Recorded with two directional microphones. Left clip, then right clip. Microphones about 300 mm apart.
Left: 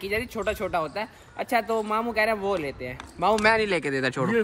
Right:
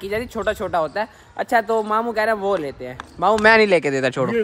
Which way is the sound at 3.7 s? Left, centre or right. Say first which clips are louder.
Right 8 dB; centre.